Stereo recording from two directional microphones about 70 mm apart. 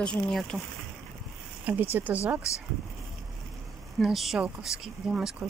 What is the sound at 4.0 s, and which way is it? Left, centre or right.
Speech, centre.